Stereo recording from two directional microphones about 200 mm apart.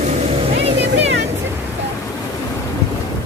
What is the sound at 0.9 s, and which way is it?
Music, 65° right (ahead or behind).